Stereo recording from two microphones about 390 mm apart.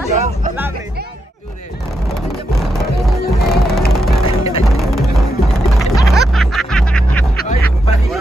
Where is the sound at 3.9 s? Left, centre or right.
Centre.